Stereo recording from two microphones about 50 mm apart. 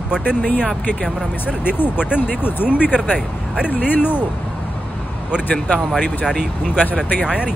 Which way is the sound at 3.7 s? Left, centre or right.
Left.